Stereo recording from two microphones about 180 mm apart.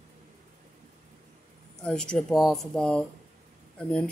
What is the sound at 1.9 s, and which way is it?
Speech, 5° left (ahead or behind).